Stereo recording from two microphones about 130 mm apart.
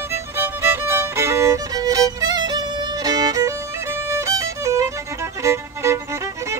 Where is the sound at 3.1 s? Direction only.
30° right (ahead or behind).